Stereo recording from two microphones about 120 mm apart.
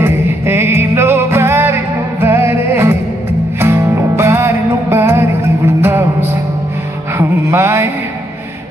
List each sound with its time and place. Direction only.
0.0 s music: 20° right (ahead or behind)